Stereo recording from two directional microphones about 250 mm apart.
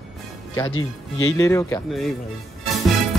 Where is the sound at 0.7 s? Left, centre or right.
Left.